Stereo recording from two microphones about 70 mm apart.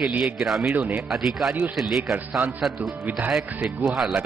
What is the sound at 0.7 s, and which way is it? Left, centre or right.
Speech, right.